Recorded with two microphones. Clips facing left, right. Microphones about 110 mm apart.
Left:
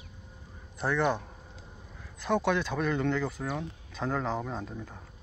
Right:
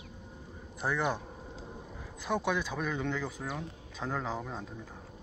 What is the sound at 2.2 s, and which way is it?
Speech, 5° right (ahead or behind).